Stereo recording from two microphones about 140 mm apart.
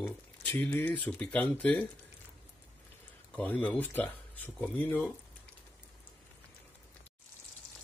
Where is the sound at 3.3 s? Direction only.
10° left (ahead or behind).